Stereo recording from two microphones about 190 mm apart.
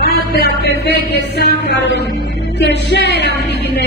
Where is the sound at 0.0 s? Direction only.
55° left (ahead or behind).